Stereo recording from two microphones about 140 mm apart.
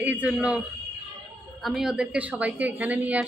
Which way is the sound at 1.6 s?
5° right (ahead or behind).